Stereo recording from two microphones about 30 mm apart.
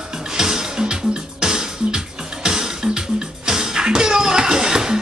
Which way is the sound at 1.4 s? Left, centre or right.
Right.